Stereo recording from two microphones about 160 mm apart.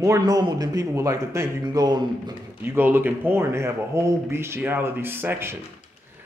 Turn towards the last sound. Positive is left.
turn(degrees=-15)  # may be behind; listen again after turning